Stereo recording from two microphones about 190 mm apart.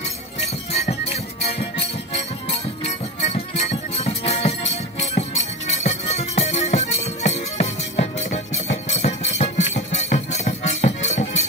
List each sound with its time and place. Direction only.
1.4 s music: 35° left (ahead or behind)